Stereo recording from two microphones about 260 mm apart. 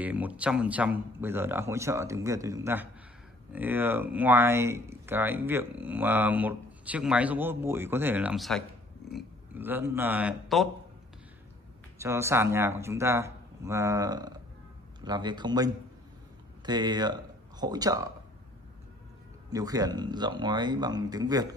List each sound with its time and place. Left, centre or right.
0.0 s speech: centre
12.0 s speech: centre
19.5 s speech: centre